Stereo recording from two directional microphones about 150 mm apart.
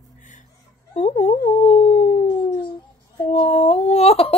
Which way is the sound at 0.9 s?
45° left (ahead or behind).